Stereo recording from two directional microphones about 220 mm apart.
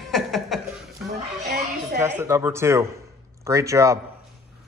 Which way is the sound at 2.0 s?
10° right (ahead or behind).